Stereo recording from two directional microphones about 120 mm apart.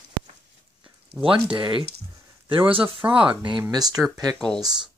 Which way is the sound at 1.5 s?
45° right (ahead or behind).